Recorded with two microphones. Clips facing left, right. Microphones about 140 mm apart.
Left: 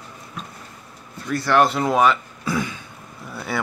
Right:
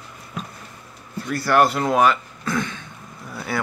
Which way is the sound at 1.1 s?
5° right (ahead or behind).